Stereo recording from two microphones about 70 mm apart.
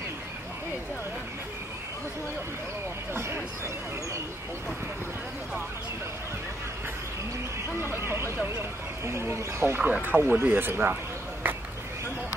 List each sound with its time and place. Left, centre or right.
3.1 s speech: right
7.9 s speech: right
9.8 s speech: right
11.4 s a sound: right